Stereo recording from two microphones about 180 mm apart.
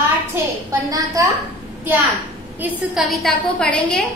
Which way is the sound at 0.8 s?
20° right (ahead or behind).